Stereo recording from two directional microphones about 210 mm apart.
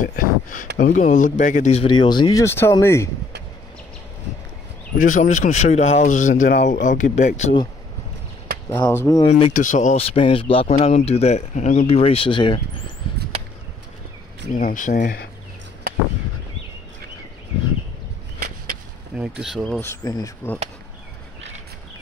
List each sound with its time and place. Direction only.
0.0 s a sound: 40° left (ahead or behind)
0.7 s speech: 40° left (ahead or behind); by 3.1 s 10° left (ahead or behind)
4.9 s speech: 40° left (ahead or behind)
8.6 s speech: 10° left (ahead or behind)
9.2 s speech: 30° left (ahead or behind)
14.6 s speech: 40° left (ahead or behind)
19.1 s speech: 5° right (ahead or behind)
19.8 s speech: 15° left (ahead or behind)